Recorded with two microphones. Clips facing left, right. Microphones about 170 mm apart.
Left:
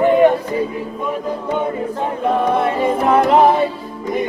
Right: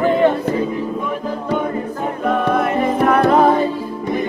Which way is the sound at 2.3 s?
30° left (ahead or behind).